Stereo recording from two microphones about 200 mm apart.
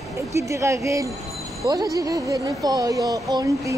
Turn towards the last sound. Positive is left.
turn(degrees=-15)  # may be behind; listen again after turning